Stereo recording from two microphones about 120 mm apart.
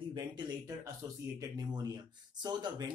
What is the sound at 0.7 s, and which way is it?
Speech, 30° right (ahead or behind).